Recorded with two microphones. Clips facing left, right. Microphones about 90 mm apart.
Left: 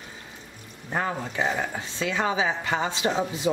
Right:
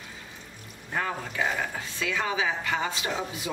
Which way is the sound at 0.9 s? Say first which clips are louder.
Left 2 dB; 25° left (ahead or behind).